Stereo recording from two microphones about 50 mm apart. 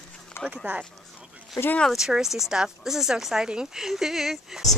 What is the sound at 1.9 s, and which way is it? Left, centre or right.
Speech, centre.